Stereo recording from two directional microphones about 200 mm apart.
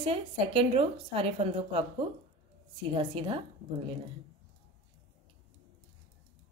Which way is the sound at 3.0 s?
25° right (ahead or behind).